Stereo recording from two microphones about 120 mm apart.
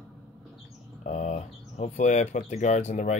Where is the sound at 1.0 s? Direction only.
75° left (ahead or behind).